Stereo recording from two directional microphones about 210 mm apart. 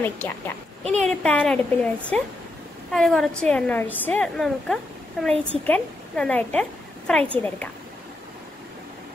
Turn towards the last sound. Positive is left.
turn(degrees=5)  # may be behind; listen again after turning